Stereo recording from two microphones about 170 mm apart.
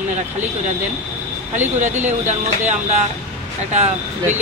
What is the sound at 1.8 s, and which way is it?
Speech, 45° right (ahead or behind).